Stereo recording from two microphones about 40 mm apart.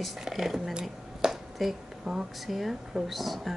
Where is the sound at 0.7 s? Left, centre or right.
Right.